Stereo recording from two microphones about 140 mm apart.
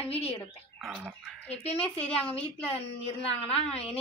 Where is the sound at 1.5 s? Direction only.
50° left (ahead or behind).